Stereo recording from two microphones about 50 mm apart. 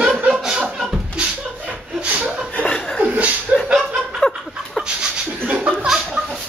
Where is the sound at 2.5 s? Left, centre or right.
Left.